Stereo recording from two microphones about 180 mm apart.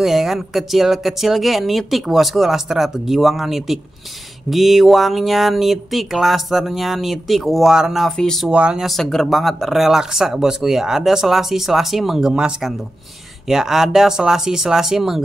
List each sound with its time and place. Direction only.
0.0 s speech: centre (ahead or behind)